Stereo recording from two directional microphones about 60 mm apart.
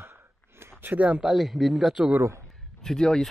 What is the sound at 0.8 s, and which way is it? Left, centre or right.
Speech, right.